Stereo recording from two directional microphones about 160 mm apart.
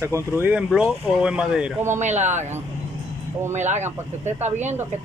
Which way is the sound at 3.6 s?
45° right (ahead or behind).